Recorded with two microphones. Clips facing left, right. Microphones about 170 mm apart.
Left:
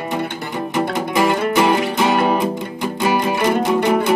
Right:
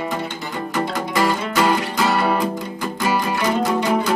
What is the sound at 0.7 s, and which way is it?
Music, 20° left (ahead or behind).